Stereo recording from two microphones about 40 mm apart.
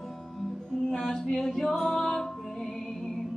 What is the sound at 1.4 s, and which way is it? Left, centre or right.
Music, centre.